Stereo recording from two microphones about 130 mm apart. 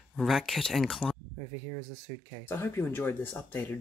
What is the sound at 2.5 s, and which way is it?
Speech, 15° left (ahead or behind).